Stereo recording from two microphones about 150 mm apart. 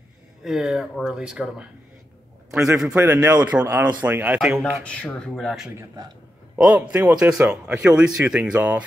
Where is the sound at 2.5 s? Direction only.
20° right (ahead or behind).